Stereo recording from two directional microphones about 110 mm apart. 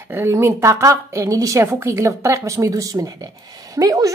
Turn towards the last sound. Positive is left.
turn(degrees=-30)  # may be behind; listen again after turning